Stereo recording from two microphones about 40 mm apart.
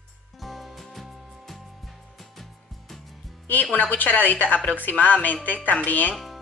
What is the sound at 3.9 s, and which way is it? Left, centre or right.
Speech, left.